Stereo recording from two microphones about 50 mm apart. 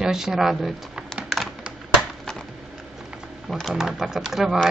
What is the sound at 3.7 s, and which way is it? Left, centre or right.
Speech, centre.